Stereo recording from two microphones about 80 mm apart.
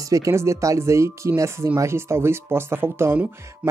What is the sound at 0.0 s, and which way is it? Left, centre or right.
Speech, right.